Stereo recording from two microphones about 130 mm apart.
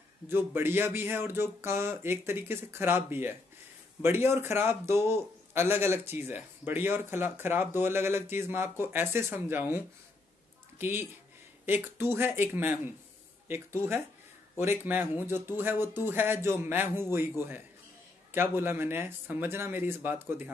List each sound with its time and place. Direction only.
0.3 s a man's voice: 15° right (ahead or behind)
10.8 s a man's voice: 15° right (ahead or behind)
14.9 s a man's voice: 15° right (ahead or behind)